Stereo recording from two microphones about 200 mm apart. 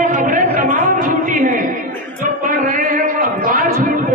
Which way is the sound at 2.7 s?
45° right (ahead or behind).